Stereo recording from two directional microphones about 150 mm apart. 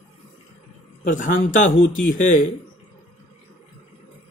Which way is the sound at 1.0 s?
60° left (ahead or behind).